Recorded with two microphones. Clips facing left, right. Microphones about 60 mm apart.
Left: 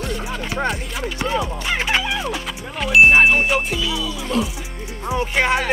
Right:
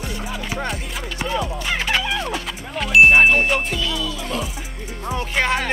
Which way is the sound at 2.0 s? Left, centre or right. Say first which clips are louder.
Even; centre.